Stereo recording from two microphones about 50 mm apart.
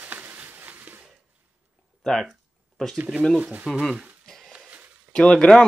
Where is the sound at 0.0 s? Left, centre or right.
Right.